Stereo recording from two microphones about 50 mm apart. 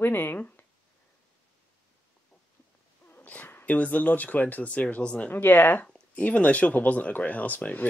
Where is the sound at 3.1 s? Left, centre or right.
Left.